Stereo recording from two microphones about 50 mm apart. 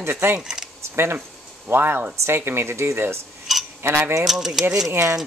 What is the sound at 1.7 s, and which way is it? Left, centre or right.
Speech, right.